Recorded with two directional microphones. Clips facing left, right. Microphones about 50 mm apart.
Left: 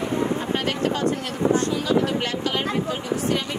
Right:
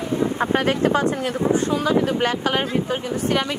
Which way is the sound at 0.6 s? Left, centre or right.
Right.